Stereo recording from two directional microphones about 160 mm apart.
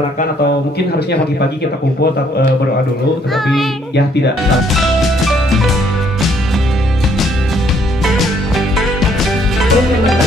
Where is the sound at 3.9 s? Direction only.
90° left.